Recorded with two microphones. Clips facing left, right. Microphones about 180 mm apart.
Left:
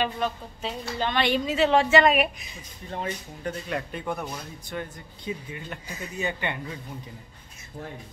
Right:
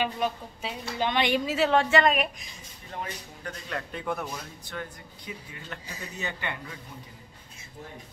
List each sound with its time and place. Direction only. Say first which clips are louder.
0.0 s a woman's voice: left 1 dB; 10° right (ahead or behind)
2.9 s speech: left 5 dB; 25° left (ahead or behind)
3.9 s a woman's voice: left 1 dB; centre (ahead or behind)
4.6 s a man's voice: left 5 dB; 20° left (ahead or behind)